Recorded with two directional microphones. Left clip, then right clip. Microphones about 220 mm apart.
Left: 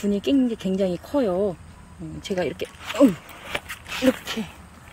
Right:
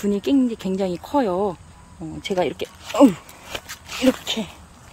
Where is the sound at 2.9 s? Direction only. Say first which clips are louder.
Right 3 dB; 55° right (ahead or behind).